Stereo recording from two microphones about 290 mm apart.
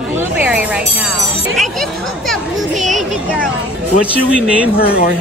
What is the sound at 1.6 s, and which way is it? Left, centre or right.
Speech, centre.